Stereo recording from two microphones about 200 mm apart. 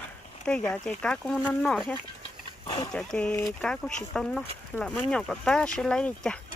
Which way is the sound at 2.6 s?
20° left (ahead or behind).